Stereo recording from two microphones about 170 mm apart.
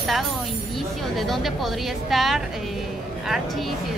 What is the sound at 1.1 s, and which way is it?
Speech, centre (ahead or behind).